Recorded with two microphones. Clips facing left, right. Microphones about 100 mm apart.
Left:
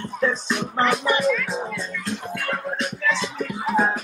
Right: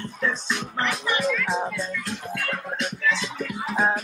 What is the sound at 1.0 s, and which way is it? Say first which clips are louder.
Speech: left 4 dB; 40° left (ahead or behind).